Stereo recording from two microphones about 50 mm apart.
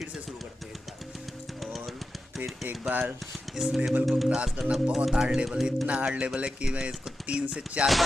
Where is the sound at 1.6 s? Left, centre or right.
Centre.